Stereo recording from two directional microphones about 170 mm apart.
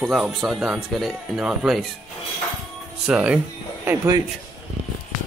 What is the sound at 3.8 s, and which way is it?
Speech, 20° right (ahead or behind).